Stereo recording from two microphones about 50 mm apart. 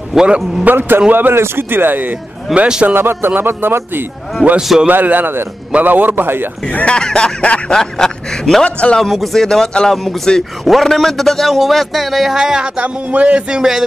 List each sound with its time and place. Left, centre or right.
0.1 s a man's voice: centre
0.7 s a man's voice: right
2.9 s a man's voice: right
4.6 s a man's voice: centre
4.8 s a man's voice: right
6.7 s a man's voice: left
7.0 s a sound: centre
7.8 s speech: centre
8.6 s a man's voice: left
9.3 s a man's voice: centre; by 13.6 s right
13.6 s a man's voice: centre